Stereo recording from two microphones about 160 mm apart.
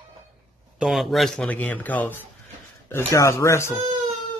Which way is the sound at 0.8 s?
Centre (ahead or behind).